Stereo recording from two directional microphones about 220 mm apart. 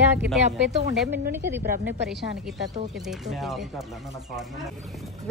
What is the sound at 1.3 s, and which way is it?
A woman's voice, 10° right (ahead or behind).